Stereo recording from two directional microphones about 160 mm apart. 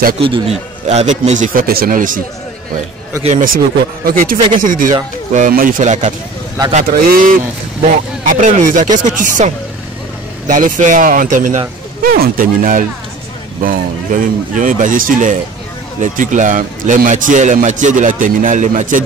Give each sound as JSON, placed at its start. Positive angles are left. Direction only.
{"t": 0.2, "sound": "a man's voice", "side_deg": -35}
{"t": 3.3, "sound": "a man's voice", "side_deg": -55}
{"t": 6.7, "sound": "a man's voice", "side_deg": -60}
{"t": 8.3, "sound": "a man's voice", "side_deg": -50}
{"t": 10.5, "sound": "a man's voice", "side_deg": -55}